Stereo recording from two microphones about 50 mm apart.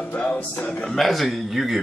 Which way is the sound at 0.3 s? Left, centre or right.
Left.